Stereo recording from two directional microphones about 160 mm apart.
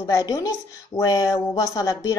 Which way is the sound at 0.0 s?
20° left (ahead or behind).